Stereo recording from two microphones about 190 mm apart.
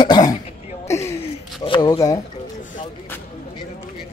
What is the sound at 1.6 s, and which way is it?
Speech, 25° left (ahead or behind).